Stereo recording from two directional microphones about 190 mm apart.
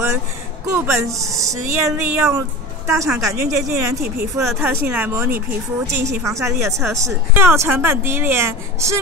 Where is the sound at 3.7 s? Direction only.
55° right (ahead or behind).